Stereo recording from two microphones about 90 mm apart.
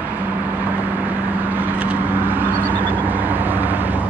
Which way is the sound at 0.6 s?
20° right (ahead or behind).